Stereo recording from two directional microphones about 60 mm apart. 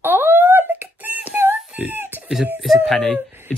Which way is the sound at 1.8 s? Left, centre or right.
Right.